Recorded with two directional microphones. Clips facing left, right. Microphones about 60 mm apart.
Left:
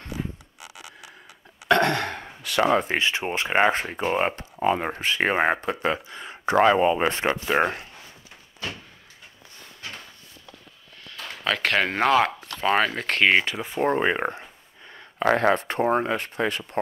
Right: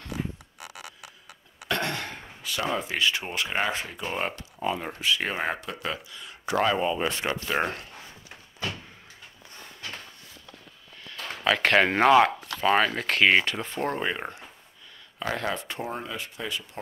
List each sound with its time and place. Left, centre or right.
1.7 s sigh: left
2.9 s speech: left
4.1 s speech: left
4.6 s speech: left
7.3 s speech: left
9.8 s drawer open or close: centre
11.4 s speech: centre
13.8 s speech: left